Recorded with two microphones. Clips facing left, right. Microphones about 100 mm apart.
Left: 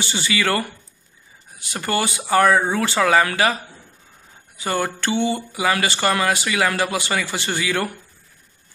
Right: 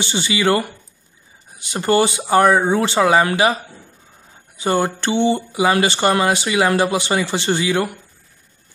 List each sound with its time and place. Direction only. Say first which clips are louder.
0.0 s speech: right 4 dB; 20° right (ahead or behind)
4.6 s speech: right 5 dB; 25° right (ahead or behind)